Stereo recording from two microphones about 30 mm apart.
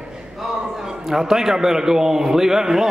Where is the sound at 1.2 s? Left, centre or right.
Centre.